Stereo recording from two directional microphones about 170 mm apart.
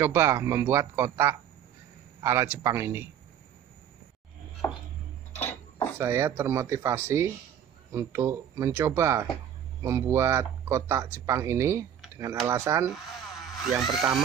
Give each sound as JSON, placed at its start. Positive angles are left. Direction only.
{"t": 0.0, "sound": "speech", "side_deg": -15}
{"t": 4.6, "sound": "chopping", "side_deg": 15}
{"t": 5.3, "sound": "a sound", "side_deg": 10}
{"t": 5.9, "sound": "speech", "side_deg": -15}
{"t": 13.7, "sound": "speech", "side_deg": 0}